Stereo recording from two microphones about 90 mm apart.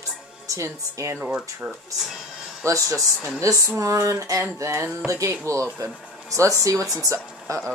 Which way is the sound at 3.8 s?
35° right (ahead or behind).